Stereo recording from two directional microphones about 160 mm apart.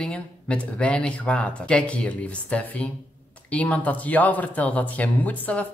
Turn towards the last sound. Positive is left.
turn(degrees=10)  # may be behind; listen again after turning